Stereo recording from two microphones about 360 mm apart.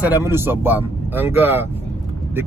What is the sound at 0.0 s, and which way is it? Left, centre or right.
Speech, centre.